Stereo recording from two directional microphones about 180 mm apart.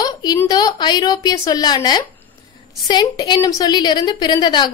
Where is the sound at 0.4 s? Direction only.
20° left (ahead or behind).